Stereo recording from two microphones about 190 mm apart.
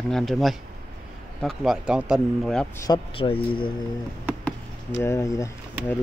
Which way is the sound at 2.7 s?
15° left (ahead or behind).